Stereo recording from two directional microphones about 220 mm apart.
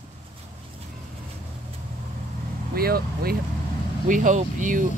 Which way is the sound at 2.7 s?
45° right (ahead or behind).